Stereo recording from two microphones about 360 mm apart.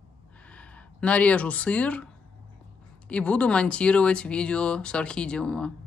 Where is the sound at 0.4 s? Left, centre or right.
Centre.